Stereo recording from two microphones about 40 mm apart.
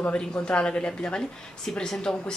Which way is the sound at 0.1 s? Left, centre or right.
Left.